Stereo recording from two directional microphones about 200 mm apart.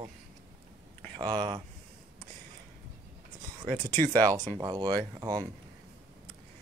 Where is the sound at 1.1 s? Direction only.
20° right (ahead or behind).